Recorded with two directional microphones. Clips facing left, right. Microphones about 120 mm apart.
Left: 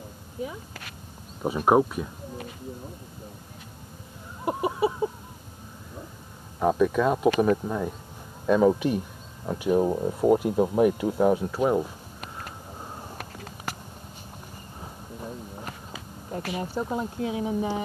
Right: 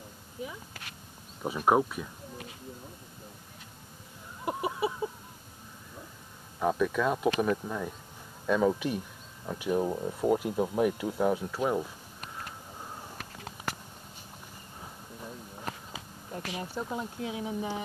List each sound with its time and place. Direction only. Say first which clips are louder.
1.4 s speech: left 5 dB; 35° left (ahead or behind)
4.5 s chicken: left 6 dB; 35° left (ahead or behind)
6.6 s speech: left 5 dB; 35° left (ahead or behind)
8.7 s speech: left 6 dB; 50° left (ahead or behind)
9.7 s speech: left 6 dB; 40° left (ahead or behind)
12.4 s a sound: left 2 dB; 35° left (ahead or behind)
14.8 s a sound: left 5 dB; 40° left (ahead or behind)
16.3 s speech: left 6 dB; 45° left (ahead or behind)
17.2 s speech: left 8 dB; 45° left (ahead or behind)